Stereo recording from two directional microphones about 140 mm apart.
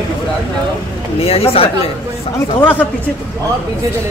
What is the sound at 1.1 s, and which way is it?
Speech, 45° left (ahead or behind).